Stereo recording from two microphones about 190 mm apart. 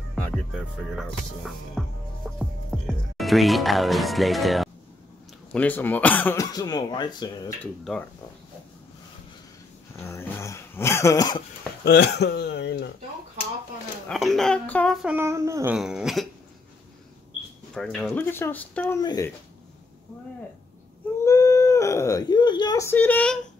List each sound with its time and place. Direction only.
0.1 s music: 5° left (ahead or behind)
0.9 s speech: centre (ahead or behind); by 7.5 s 20° left (ahead or behind)
9.9 s speech: 15° left (ahead or behind)
11.8 s speech: 60° left (ahead or behind)
14.0 s speech: centre (ahead or behind); by 15.7 s 15° right (ahead or behind)
15.7 s speech: 5° right (ahead or behind)
17.7 s speech: centre (ahead or behind)
18.2 s speech: 10° left (ahead or behind)
21.2 s speech: 15° left (ahead or behind)